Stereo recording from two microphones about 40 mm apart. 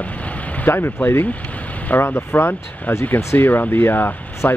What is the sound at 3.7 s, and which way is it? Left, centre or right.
Speech, left.